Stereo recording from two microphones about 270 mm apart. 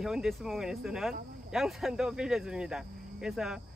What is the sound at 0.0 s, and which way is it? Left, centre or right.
Speech, centre.